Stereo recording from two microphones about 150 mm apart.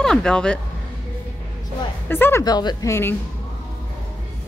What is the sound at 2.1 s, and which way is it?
Speech, 15° left (ahead or behind).